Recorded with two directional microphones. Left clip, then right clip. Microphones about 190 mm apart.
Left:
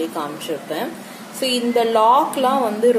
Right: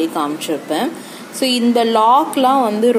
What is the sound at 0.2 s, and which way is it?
A woman's voice, 40° right (ahead or behind).